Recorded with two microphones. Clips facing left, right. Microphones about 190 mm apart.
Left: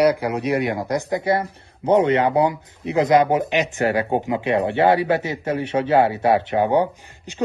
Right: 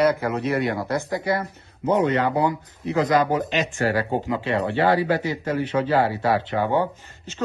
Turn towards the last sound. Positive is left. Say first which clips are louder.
# left 3 dB
turn(degrees=15)  # may be behind; listen again after turning